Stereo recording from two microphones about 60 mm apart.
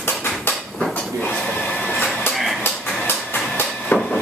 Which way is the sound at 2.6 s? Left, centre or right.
Left.